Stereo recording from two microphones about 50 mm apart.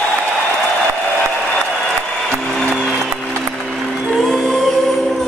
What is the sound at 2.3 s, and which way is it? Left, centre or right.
Music, centre.